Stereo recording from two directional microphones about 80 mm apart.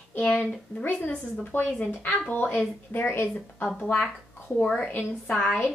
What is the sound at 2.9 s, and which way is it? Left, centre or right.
Speech, left.